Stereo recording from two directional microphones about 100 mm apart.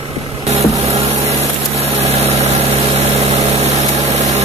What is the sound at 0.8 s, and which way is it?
Wood, 90° right.